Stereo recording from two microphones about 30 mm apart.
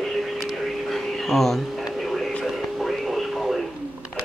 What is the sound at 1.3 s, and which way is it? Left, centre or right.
Speech, centre.